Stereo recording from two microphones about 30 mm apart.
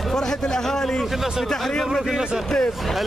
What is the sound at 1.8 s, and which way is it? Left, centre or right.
Speech, centre.